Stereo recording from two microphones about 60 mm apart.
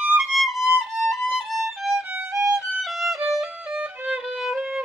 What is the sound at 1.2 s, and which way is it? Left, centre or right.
Violin, centre.